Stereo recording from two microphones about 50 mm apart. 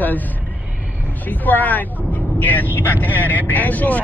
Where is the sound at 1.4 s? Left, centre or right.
Left.